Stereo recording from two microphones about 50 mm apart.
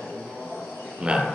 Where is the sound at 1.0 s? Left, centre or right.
Centre.